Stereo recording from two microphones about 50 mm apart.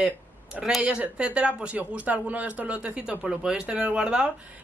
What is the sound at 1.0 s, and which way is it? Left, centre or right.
Speech, right.